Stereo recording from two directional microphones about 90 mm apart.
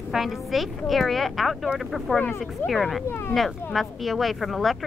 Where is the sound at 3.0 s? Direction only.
25° left (ahead or behind).